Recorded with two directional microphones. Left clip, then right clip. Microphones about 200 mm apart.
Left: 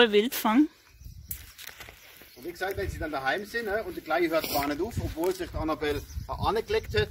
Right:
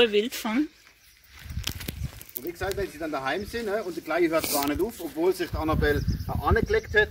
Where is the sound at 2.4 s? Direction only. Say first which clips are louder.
Right 2 dB; 45° right (ahead or behind).